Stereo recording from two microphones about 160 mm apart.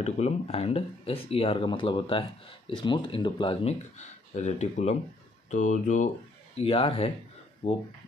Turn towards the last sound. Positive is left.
turn(degrees=40)  # may be behind; listen again after turning